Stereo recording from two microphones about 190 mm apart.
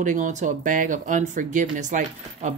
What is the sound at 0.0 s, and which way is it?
Speech, 40° right (ahead or behind).